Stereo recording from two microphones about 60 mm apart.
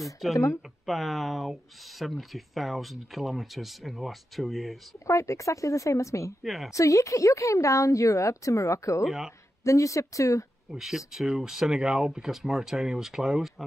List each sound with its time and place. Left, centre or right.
0.0 s speech: centre
5.0 s speech: left
6.4 s speech: centre
6.7 s speech: left
9.0 s speech: centre
9.7 s speech: left
10.7 s speech: centre